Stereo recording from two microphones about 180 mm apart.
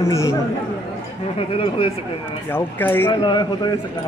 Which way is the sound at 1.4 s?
30° left (ahead or behind).